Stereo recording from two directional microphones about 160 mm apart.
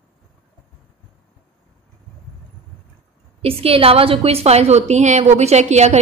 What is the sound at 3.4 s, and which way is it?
A woman's voice, 35° right (ahead or behind).